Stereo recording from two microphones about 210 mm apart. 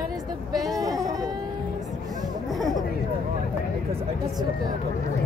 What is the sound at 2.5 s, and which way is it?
Chatter, centre (ahead or behind).